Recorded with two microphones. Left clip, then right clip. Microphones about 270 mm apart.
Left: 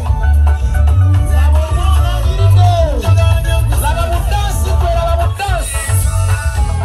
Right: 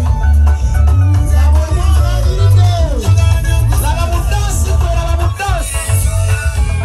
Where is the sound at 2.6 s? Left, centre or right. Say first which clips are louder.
Left 8 dB; left.